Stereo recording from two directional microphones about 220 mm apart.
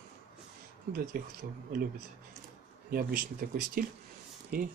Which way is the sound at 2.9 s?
40° right (ahead or behind).